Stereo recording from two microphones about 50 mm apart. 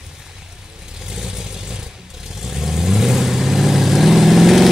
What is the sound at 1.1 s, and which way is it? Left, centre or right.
Vehicle, centre.